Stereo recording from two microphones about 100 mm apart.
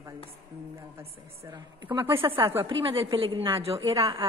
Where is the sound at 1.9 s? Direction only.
55° right (ahead or behind).